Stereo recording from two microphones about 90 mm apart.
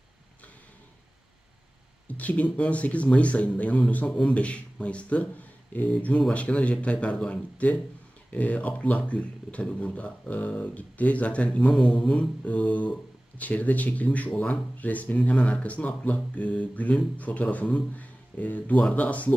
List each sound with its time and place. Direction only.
2.1 s speech: 15° left (ahead or behind)